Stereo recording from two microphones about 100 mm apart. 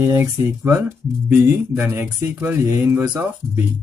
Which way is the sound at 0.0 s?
25° right (ahead or behind).